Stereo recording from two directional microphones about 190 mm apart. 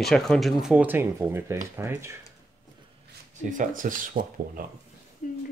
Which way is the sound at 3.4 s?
45° right (ahead or behind).